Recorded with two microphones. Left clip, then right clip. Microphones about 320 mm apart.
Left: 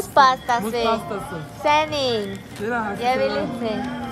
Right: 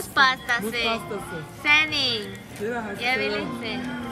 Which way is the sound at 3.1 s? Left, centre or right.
Centre.